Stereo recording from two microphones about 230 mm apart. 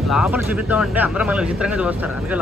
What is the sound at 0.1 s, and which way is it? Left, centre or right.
Speech, centre.